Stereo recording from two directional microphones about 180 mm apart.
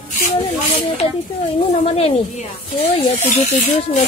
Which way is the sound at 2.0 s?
35° left (ahead or behind).